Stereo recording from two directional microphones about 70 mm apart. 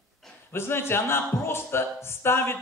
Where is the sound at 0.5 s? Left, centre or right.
Left.